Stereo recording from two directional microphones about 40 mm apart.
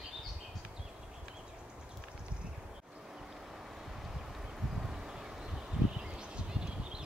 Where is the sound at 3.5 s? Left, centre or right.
Centre.